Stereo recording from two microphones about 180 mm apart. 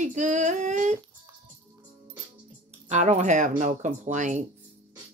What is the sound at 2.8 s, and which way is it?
Speech, 40° right (ahead or behind).